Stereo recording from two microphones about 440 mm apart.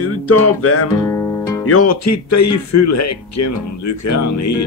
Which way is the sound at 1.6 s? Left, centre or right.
Left.